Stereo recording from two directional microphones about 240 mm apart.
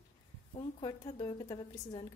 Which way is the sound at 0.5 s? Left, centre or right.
Centre.